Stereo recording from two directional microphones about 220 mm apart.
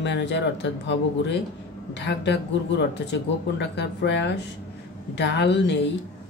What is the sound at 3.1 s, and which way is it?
Speech, 50° left (ahead or behind).